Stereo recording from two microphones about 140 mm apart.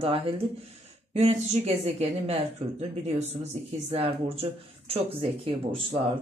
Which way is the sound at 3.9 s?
45° right (ahead or behind).